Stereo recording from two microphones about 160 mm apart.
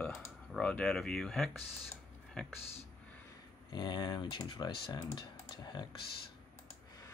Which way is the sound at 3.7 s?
25° left (ahead or behind).